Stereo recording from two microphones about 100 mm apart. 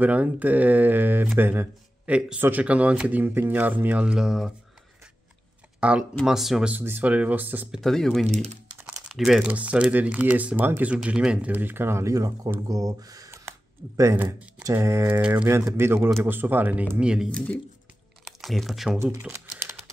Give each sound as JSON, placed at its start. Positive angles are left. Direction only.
{"t": 0.0, "sound": "speech", "side_deg": -15}
{"t": 5.8, "sound": "speech", "side_deg": -10}
{"t": 6.8, "sound": "speech", "side_deg": -20}
{"t": 7.8, "sound": "speech", "side_deg": 5}
{"t": 14.1, "sound": "speech", "side_deg": -20}
{"t": 14.6, "sound": "speech", "side_deg": -30}
{"t": 15.0, "sound": "speech", "side_deg": -15}
{"t": 18.4, "sound": "speech", "side_deg": 0}
{"t": 19.1, "sound": "typing", "side_deg": -30}